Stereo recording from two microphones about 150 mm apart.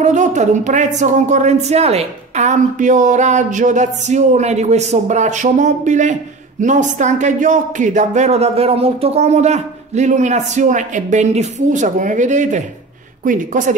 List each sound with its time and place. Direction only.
0.0 s speech: 55° right (ahead or behind)